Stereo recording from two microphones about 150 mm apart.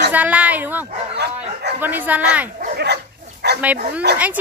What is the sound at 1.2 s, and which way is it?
Bow-wow, 90° right.